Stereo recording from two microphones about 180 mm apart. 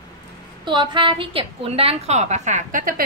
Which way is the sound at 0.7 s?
25° right (ahead or behind).